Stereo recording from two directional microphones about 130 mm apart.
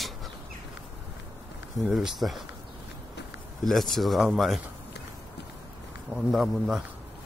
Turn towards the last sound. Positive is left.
turn(degrees=0)  # may be behind; listen again after turning